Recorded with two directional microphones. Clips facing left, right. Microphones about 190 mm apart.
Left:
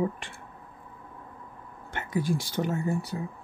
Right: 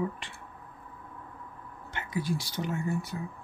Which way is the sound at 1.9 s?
50° left (ahead or behind).